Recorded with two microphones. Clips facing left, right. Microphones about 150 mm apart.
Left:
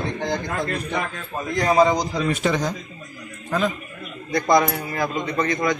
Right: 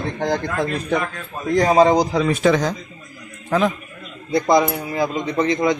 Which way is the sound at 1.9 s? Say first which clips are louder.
Right 5 dB; 75° right (ahead or behind).